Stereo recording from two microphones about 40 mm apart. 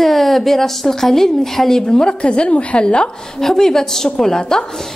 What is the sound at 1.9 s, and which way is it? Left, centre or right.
A woman's voice, left.